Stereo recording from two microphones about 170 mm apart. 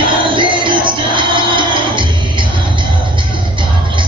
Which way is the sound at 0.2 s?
30° right (ahead or behind).